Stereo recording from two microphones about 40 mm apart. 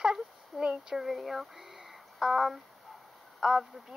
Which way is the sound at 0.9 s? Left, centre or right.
Centre.